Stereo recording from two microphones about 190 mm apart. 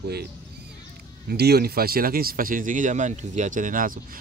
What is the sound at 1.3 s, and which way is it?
Speech, 55° right (ahead or behind).